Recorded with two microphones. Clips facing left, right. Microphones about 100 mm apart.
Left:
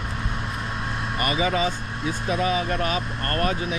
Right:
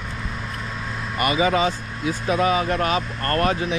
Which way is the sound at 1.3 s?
35° right (ahead or behind).